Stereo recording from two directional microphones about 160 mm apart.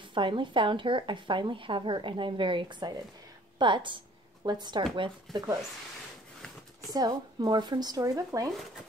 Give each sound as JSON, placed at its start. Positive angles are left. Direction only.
{"t": 0.1, "sound": "a woman's voice", "side_deg": -30}
{"t": 6.9, "sound": "speech", "side_deg": -25}